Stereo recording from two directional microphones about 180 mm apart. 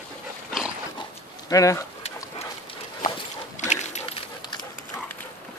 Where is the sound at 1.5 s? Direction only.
20° left (ahead or behind).